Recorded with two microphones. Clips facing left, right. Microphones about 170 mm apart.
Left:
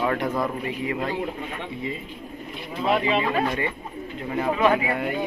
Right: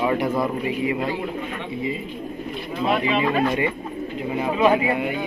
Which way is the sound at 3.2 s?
20° right (ahead or behind).